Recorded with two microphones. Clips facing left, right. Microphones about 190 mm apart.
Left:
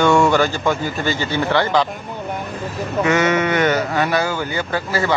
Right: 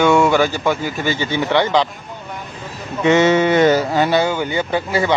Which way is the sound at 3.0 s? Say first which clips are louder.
Right 5 dB; 25° right (ahead or behind).